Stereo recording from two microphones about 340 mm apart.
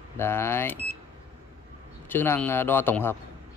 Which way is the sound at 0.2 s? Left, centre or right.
Centre.